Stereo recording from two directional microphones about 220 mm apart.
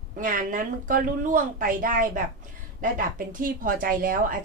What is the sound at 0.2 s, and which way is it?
A woman's voice, 35° right (ahead or behind).